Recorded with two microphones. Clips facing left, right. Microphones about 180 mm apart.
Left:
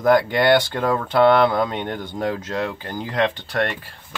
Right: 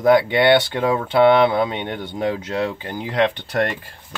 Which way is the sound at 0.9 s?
20° right (ahead or behind).